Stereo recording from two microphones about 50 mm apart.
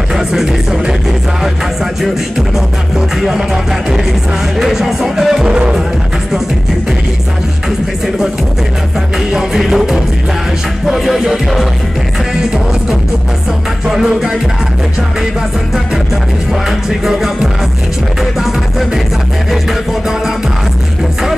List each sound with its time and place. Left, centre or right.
0.1 s music: centre
3.2 s music: centre
4.6 s music: centre
9.3 s music: centre
10.9 s music: centre
13.8 s music: centre
16.6 s music: centre